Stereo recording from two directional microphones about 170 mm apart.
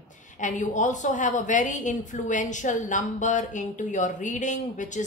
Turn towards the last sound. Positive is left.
turn(degrees=45)  # may be behind; listen again after turning